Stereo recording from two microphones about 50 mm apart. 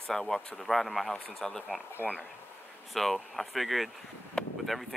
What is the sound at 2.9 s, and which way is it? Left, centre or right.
Speech, centre.